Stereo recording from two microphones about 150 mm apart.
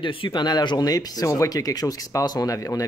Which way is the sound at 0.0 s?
35° left (ahead or behind).